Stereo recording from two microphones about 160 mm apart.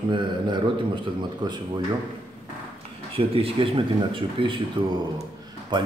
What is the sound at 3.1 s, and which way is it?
A man's voice, 35° right (ahead or behind).